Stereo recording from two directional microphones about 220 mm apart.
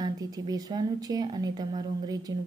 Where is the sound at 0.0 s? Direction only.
15° right (ahead or behind).